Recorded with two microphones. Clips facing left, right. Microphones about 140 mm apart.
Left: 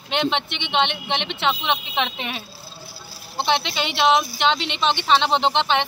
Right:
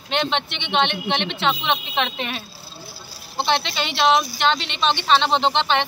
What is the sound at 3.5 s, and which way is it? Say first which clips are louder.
Speech: even; 15° left (ahead or behind).